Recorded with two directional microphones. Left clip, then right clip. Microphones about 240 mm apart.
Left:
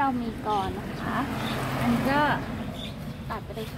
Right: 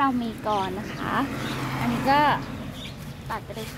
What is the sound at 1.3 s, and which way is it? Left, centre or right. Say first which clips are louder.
Speech: even; left.